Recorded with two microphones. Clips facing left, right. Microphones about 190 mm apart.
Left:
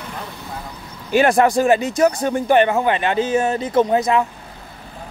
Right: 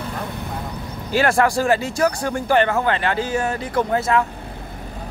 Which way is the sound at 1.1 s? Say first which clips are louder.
Left 3 dB; 20° left (ahead or behind).